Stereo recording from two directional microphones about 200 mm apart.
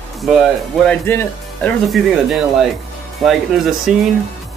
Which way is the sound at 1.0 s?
10° left (ahead or behind).